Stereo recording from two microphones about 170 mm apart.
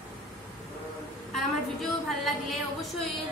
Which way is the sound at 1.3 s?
Centre (ahead or behind).